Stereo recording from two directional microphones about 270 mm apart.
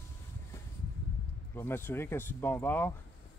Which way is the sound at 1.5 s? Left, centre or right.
Centre.